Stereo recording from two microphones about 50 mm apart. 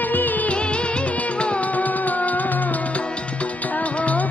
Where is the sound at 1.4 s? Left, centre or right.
Left.